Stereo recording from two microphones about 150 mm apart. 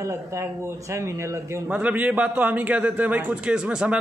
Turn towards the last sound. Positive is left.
turn(degrees=-5)  # may be behind; listen again after turning